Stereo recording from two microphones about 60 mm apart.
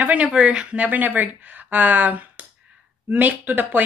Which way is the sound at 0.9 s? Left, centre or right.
Right.